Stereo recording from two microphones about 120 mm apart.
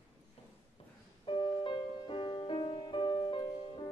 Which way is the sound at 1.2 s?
45° left (ahead or behind).